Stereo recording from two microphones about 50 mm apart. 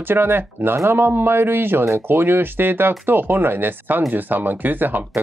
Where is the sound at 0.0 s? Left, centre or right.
Right.